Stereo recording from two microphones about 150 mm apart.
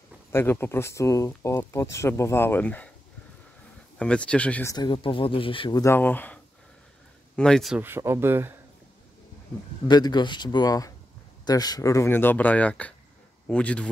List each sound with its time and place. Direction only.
0.3 s speech: 15° left (ahead or behind)
4.0 s speech: 5° left (ahead or behind)
4.6 s speech: 30° left (ahead or behind)
5.8 s speech: 15° left (ahead or behind)
7.8 s speech: 15° right (ahead or behind)
9.8 s speech: 30° left (ahead or behind); by 13.8 s 5° left (ahead or behind)